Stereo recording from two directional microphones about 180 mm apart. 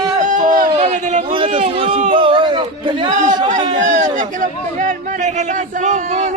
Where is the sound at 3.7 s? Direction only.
45° right (ahead or behind).